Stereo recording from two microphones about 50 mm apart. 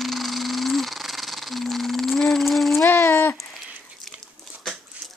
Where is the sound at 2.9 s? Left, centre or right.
Left.